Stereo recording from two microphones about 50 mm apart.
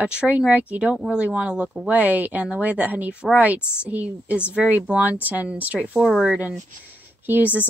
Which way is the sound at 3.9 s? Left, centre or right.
Right.